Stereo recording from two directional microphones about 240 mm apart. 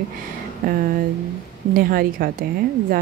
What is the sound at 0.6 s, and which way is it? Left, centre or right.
Speech, right.